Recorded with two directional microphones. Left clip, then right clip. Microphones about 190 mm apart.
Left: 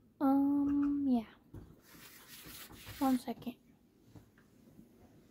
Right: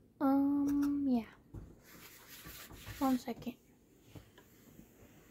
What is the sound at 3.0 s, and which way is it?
Speech, 15° left (ahead or behind).